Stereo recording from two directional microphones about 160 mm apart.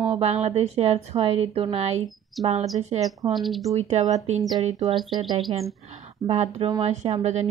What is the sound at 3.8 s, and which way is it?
Speech, 45° right (ahead or behind).